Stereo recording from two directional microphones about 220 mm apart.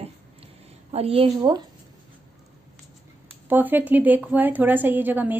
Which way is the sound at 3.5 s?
10° right (ahead or behind).